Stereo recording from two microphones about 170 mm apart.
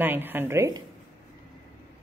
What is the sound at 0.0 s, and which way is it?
Speech, 10° right (ahead or behind).